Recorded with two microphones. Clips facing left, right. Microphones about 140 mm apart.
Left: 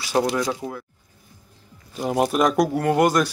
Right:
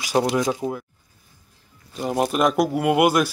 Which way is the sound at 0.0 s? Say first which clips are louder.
Right 1 dB; 15° right (ahead or behind).